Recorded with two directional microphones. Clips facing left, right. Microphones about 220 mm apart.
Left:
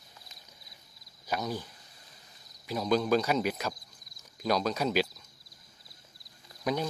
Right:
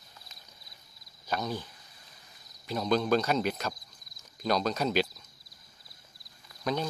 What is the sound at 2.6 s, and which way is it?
Cricket, 5° left (ahead or behind).